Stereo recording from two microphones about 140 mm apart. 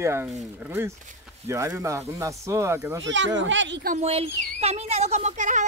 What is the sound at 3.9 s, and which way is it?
Speech, 45° right (ahead or behind).